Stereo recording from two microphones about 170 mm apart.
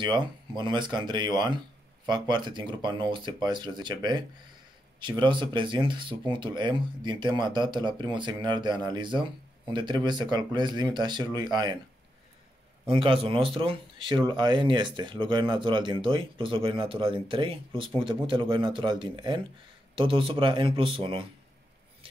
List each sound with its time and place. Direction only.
0.0 s speech: 25° right (ahead or behind)
12.9 s speech: 30° right (ahead or behind)